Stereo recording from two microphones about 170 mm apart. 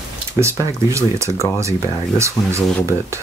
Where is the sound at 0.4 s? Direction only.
15° right (ahead or behind).